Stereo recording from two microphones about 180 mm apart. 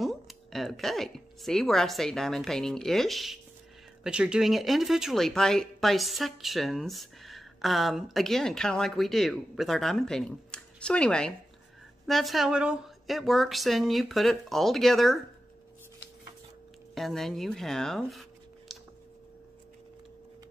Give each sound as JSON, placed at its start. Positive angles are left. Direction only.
{"t": 0.0, "sound": "speech", "side_deg": 0}
{"t": 16.9, "sound": "speech", "side_deg": 0}